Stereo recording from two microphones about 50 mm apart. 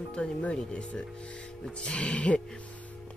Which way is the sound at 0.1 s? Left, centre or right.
Left.